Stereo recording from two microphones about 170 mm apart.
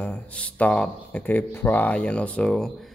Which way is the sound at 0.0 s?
10° left (ahead or behind).